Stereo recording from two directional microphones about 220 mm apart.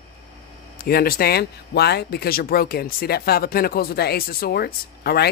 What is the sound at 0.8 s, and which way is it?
Speech, 40° left (ahead or behind).